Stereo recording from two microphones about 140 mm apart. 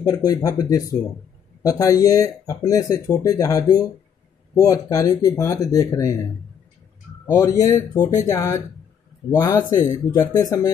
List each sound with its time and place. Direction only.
0.0 s speech: 25° left (ahead or behind)
7.2 s speech: 25° left (ahead or behind)